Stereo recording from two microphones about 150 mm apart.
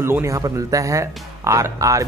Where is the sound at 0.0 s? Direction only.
15° right (ahead or behind).